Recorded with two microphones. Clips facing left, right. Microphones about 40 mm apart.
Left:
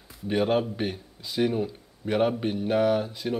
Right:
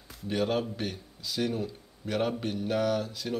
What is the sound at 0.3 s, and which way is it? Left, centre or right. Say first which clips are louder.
A man's voice: left 5 dB; centre.